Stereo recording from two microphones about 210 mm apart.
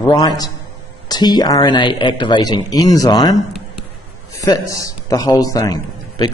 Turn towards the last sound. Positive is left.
turn(degrees=20)  # may be behind; listen again after turning